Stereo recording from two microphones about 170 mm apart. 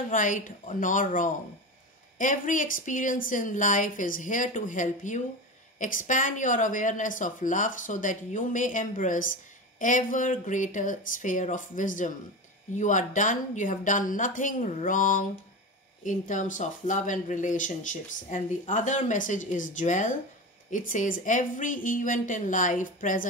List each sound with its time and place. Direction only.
0.1 s speech: 50° left (ahead or behind)